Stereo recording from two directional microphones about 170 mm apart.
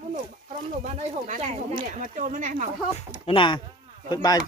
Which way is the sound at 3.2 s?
30° left (ahead or behind).